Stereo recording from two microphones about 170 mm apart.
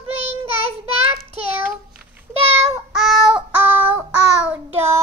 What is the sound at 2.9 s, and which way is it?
Child singing, centre (ahead or behind).